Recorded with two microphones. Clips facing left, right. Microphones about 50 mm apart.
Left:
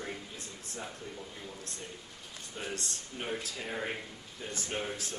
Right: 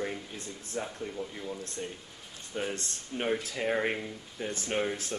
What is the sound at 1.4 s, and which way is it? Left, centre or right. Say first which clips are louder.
Speech: right 7 dB; right.